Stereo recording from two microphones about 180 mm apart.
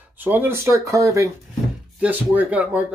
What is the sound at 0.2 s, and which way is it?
Speech, 10° right (ahead or behind).